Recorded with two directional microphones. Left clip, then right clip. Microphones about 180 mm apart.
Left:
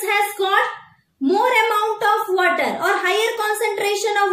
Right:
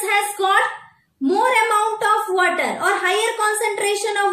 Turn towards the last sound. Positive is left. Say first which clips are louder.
# left 1 dB
turn(degrees=5)  # may be behind; listen again after turning